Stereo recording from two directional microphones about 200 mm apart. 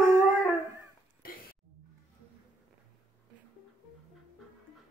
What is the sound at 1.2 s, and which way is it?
Throat clearing, 45° left (ahead or behind).